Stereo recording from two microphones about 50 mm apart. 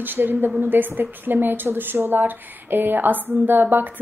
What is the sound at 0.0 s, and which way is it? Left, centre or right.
A woman's voice, right.